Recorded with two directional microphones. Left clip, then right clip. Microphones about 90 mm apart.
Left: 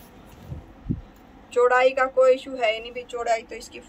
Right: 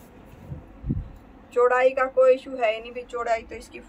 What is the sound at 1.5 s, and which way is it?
A woman's voice, 20° right (ahead or behind).